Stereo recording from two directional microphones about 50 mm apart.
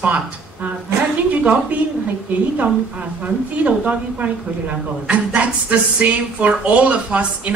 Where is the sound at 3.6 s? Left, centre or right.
Right.